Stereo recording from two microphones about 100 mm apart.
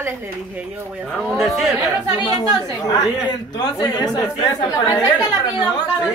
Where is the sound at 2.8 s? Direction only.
40° left (ahead or behind).